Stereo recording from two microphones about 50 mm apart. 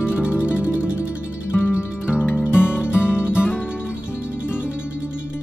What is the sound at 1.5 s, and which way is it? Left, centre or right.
Music, left.